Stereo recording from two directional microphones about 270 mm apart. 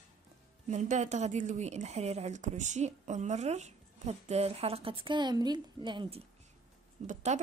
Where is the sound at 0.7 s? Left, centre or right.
Right.